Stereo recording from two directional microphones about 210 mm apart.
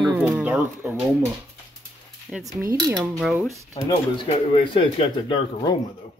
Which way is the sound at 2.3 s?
Centre (ahead or behind).